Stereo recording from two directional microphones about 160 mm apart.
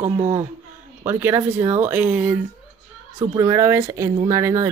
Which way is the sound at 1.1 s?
15° right (ahead or behind).